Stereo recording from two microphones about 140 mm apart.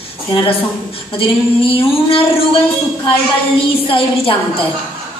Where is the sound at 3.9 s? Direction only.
40° left (ahead or behind).